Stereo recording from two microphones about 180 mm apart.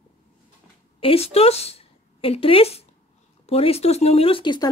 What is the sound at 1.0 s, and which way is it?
A woman's voice, 35° left (ahead or behind).